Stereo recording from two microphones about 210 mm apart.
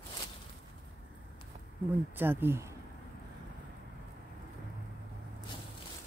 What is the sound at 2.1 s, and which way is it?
Speech, 10° right (ahead or behind).